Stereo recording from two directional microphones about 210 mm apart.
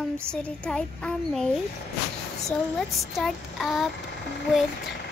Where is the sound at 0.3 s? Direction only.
5° left (ahead or behind).